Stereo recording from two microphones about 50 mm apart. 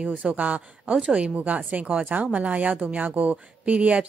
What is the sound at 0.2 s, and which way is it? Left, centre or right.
Speech, right.